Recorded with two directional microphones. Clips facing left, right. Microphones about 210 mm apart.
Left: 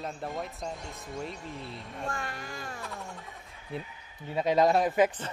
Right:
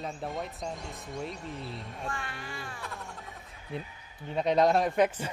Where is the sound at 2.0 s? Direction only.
45° left (ahead or behind).